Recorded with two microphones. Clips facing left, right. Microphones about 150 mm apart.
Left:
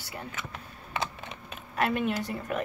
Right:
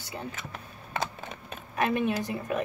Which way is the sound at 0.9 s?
40° right (ahead or behind).